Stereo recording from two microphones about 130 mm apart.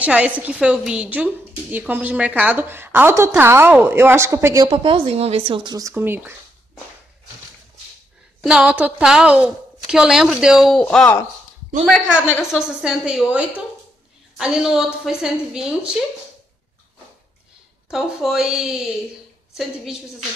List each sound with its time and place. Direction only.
0.0 s a woman's voice: 10° right (ahead or behind)
4.6 s speech: 45° right (ahead or behind); by 6.3 s 15° right (ahead or behind)
8.5 s a woman's voice: 10° right (ahead or behind)
12.4 s a woman's voice: 5° right (ahead or behind)
17.8 s a woman's voice: 5° right (ahead or behind)